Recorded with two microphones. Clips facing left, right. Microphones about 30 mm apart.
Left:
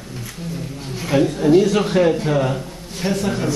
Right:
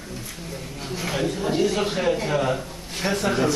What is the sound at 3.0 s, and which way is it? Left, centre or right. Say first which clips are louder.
Speech: left 2 dB; centre.